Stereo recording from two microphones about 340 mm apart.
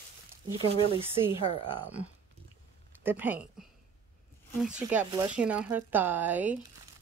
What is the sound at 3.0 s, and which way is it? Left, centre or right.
Speech, centre.